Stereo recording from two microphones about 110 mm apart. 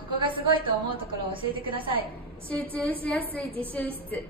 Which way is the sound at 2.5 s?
15° left (ahead or behind).